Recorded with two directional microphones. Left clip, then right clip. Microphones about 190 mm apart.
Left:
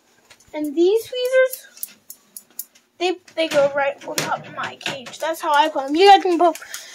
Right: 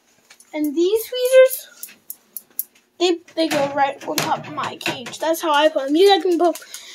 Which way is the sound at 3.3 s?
20° right (ahead or behind).